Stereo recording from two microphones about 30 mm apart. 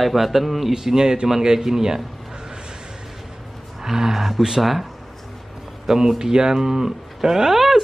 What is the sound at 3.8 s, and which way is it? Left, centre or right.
Speech, centre.